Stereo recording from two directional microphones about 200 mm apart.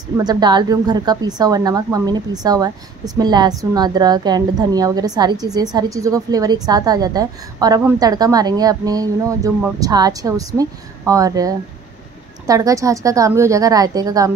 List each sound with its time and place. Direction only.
0.2 s a woman's voice: 20° right (ahead or behind)